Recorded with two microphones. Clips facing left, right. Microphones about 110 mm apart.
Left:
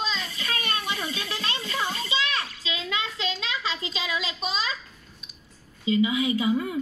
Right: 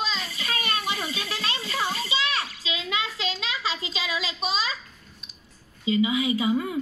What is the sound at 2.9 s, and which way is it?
A child's voice, 25° right (ahead or behind).